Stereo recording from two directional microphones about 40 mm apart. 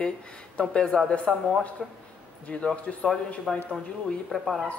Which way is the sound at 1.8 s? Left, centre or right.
Centre.